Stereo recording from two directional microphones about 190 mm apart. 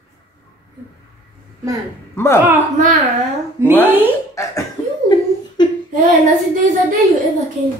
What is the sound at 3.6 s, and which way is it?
Speech, 15° right (ahead or behind).